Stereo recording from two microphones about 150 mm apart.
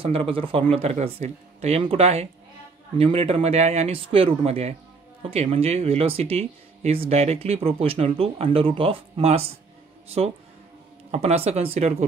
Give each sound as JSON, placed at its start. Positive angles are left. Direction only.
{"t": 0.0, "sound": "speech", "side_deg": -40}